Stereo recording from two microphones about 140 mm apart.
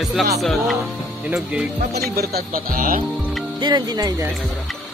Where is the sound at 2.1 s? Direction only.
90° right.